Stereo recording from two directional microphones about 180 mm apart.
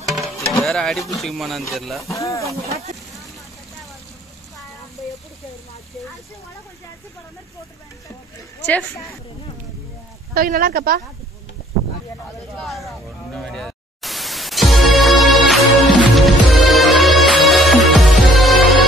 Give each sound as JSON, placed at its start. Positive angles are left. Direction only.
{"t": 0.1, "sound": "music", "side_deg": 0}
{"t": 1.2, "sound": "speech", "side_deg": 0}
{"t": 2.0, "sound": "speech", "side_deg": 15}
{"t": 10.3, "sound": "speech", "side_deg": -55}
{"t": 12.5, "sound": "static", "side_deg": 0}